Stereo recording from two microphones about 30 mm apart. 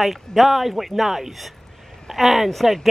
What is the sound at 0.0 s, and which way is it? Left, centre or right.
Speech, centre.